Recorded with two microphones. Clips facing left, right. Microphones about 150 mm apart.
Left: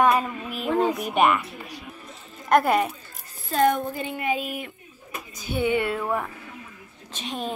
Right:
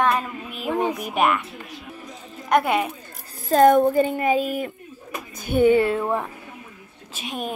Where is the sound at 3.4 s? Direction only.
45° right (ahead or behind).